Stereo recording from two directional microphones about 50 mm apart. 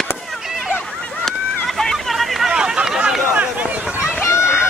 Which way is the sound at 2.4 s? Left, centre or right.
Centre.